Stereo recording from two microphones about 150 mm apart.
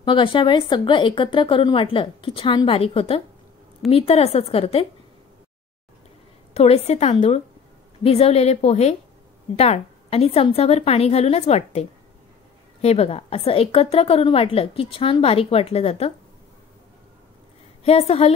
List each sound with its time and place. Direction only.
0.0 s a woman's voice: 35° left (ahead or behind)
6.5 s a woman's voice: 45° left (ahead or behind)
17.8 s a woman's voice: 40° left (ahead or behind)